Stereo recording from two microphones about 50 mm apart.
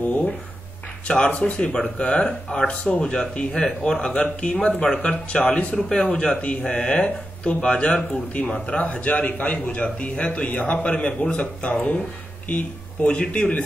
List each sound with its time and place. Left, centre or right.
1.0 s speech: left
5.8 s speech: centre